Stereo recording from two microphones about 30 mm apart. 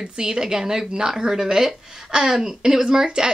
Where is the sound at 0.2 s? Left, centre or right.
Right.